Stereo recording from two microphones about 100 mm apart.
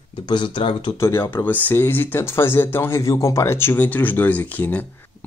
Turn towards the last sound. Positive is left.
turn(degrees=15)  # may be behind; listen again after turning